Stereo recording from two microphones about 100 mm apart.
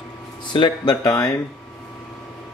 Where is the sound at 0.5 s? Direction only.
50° left (ahead or behind).